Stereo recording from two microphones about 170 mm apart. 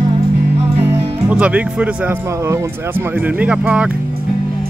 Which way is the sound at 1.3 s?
5° right (ahead or behind).